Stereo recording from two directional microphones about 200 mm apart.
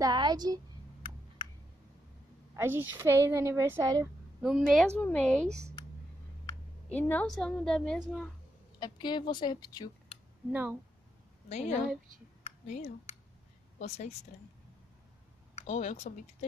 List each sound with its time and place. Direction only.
0.0 s a woman's voice: 20° right (ahead or behind)
2.5 s a woman's voice: 10° right (ahead or behind)
4.4 s a woman's voice: centre (ahead or behind)
4.9 s a woman's voice: 10° left (ahead or behind)
6.9 s a woman's voice: 10° left (ahead or behind)
8.7 s a woman's voice: 20° left (ahead or behind)
10.5 s a woman's voice: 10° right (ahead or behind)
11.4 s a woman's voice: 35° left (ahead or behind)
12.4 s a sound: 35° left (ahead or behind)
13.7 s a woman's voice: 35° left (ahead or behind)
15.5 s speech: 35° left (ahead or behind)